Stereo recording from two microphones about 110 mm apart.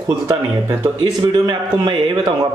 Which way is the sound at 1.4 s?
40° right (ahead or behind).